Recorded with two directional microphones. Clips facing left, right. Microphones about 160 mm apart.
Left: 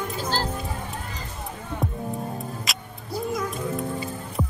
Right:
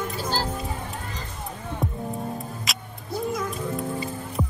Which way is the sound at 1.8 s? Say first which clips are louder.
Even; centre (ahead or behind).